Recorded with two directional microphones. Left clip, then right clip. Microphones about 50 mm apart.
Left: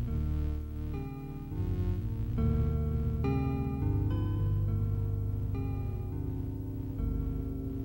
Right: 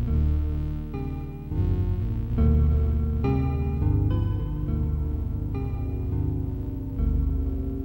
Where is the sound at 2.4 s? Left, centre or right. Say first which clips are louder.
Right 7 dB; right.